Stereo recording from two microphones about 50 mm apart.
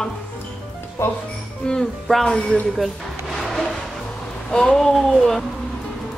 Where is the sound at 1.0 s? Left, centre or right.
Left.